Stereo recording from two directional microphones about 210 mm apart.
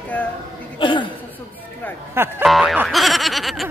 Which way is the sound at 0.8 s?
20° left (ahead or behind).